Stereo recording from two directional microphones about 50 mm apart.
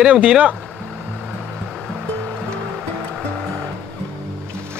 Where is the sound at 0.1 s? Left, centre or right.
Right.